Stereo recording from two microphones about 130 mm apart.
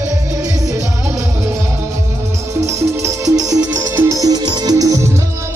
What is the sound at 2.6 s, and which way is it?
Music, 25° right (ahead or behind).